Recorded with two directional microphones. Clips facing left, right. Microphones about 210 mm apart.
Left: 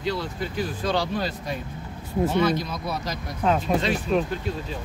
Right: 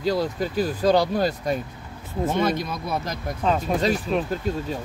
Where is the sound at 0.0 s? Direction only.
40° right (ahead or behind).